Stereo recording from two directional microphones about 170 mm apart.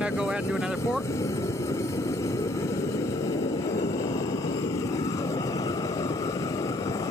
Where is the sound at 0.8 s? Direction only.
15° left (ahead or behind).